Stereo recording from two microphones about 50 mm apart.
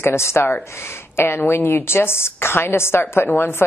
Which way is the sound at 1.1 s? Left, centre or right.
Left.